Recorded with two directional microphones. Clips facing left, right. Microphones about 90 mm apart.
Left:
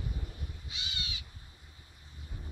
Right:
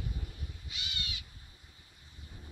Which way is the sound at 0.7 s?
25° left (ahead or behind).